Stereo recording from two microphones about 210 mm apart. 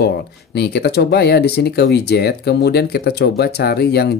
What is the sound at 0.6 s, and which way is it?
Speech, 55° left (ahead or behind).